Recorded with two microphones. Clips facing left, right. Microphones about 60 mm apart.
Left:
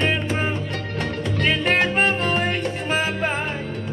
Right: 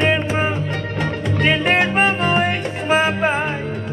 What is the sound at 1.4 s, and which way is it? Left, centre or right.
Music, centre.